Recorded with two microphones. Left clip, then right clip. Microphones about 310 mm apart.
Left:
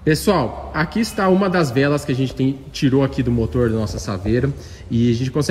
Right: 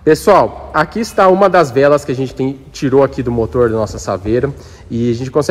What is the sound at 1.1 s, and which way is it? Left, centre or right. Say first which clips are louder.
Speech: right 10 dB; right.